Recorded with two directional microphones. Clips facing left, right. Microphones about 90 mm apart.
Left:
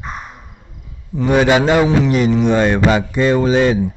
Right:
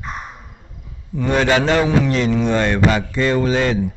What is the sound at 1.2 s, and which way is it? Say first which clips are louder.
A man's voice: left 4 dB; 15° left (ahead or behind).